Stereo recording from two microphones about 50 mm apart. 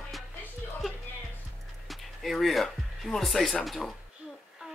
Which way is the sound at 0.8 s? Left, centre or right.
Centre.